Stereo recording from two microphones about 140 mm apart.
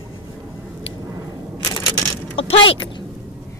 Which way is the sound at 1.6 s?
25° left (ahead or behind).